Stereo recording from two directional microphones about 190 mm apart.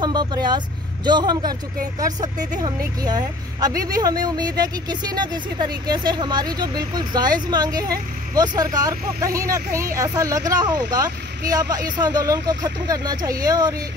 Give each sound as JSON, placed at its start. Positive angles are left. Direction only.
{"t": 0.0, "sound": "speech", "side_deg": -20}